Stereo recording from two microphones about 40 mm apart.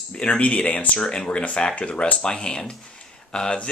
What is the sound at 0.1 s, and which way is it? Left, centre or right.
Speech, left.